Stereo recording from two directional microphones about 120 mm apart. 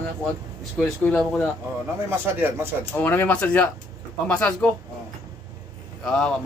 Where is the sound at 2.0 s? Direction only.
20° right (ahead or behind).